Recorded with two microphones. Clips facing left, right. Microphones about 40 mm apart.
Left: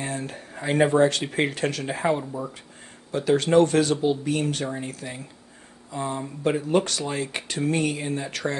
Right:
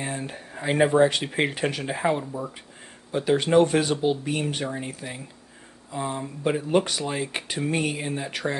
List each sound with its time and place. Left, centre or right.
0.0 s speech: centre
1.9 s speech: centre
3.1 s speech: centre
6.8 s speech: centre